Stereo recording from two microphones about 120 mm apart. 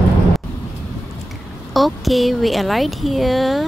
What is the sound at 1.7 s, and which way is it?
A woman's voice, centre (ahead or behind).